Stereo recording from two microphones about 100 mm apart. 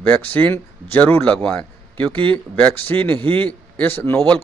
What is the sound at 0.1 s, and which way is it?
A man's voice, 15° left (ahead or behind).